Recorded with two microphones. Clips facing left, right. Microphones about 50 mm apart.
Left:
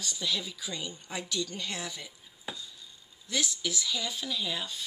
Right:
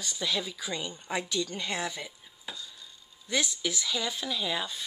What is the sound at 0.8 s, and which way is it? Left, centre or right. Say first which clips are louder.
Dishes: right 2 dB; right.